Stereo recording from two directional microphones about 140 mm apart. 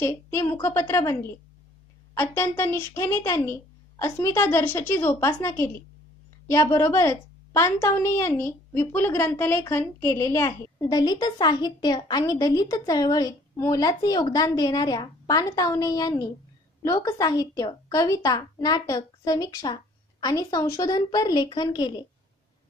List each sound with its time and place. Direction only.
0.0 s a woman's voice: 20° left (ahead or behind)
2.1 s a woman's voice: 15° left (ahead or behind)